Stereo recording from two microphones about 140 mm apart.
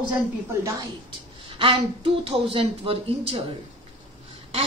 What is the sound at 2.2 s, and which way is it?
A woman's voice, 40° right (ahead or behind).